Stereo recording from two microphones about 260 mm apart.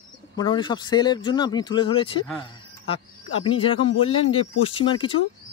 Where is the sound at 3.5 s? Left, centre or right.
Left.